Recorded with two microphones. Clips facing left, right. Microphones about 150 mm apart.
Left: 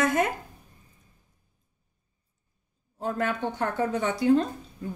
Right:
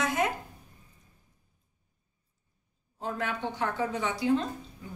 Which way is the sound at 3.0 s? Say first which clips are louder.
Left 5 dB; 50° left (ahead or behind).